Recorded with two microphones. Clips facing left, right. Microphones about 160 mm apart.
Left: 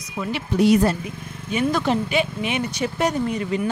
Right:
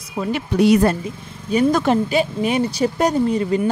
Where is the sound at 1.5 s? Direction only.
40° right (ahead or behind).